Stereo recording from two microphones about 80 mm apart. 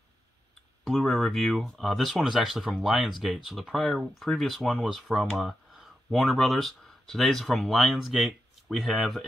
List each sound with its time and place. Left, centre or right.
0.8 s speech: centre